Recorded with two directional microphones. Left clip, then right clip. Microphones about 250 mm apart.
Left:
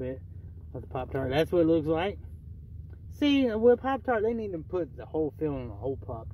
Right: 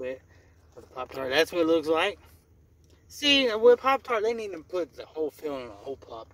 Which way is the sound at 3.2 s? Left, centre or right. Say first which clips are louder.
Right 3 dB; centre.